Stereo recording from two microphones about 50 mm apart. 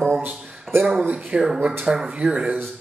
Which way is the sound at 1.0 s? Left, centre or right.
Right.